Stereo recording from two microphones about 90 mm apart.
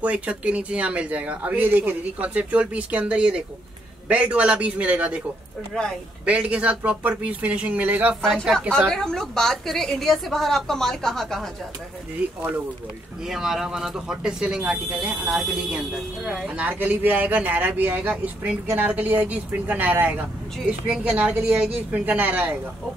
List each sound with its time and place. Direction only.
0.0 s speech: 15° right (ahead or behind)
5.7 s speech: 10° left (ahead or behind)
6.2 s speech: 15° right (ahead or behind)
8.5 s a woman's voice: 5° left (ahead or behind)
13.2 s speech: 5° right (ahead or behind)